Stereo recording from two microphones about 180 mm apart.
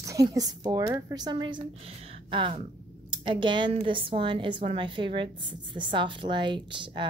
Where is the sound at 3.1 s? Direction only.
25° right (ahead or behind).